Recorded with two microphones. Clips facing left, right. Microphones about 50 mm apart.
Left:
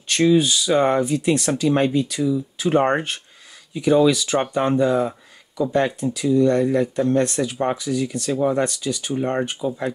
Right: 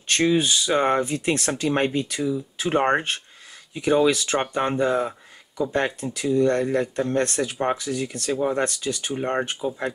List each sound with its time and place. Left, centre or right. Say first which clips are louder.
0.2 s speech: left 5 dB; right